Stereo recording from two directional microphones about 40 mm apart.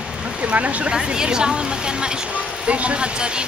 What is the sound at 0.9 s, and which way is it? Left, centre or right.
A woman's voice, centre.